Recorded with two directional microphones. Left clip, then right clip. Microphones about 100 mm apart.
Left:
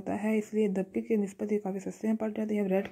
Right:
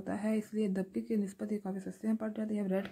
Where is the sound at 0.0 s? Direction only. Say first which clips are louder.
Left 5 dB; 15° left (ahead or behind).